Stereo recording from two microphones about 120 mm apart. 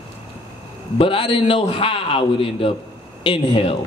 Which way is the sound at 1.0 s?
50° left (ahead or behind).